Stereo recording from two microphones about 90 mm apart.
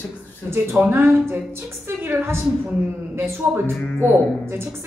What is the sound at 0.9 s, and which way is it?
Speech, 25° right (ahead or behind).